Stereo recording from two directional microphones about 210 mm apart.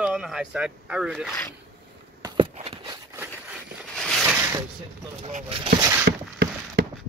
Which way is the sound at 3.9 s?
Centre (ahead or behind).